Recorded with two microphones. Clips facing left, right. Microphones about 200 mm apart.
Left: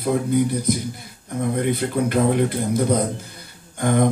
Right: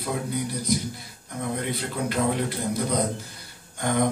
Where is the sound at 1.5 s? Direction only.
50° left (ahead or behind).